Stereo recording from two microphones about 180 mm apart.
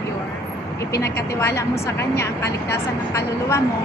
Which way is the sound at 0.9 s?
65° left (ahead or behind).